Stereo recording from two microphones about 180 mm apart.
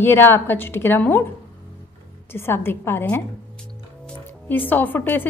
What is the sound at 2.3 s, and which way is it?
Speech, 10° left (ahead or behind).